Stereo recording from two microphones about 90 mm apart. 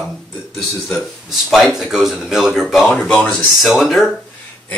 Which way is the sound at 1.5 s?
5° right (ahead or behind).